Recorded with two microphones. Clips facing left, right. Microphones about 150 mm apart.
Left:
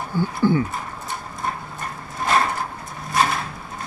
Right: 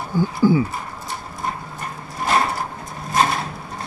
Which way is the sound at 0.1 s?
10° right (ahead or behind).